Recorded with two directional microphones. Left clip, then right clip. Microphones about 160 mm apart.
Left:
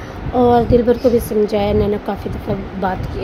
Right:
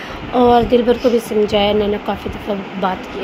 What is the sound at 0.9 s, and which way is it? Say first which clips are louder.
A woman's voice: even; 15° left (ahead or behind).